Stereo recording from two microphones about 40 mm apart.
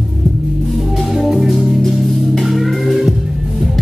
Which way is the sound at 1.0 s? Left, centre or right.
Centre.